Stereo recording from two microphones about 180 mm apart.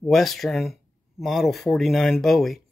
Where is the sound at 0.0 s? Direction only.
Centre (ahead or behind).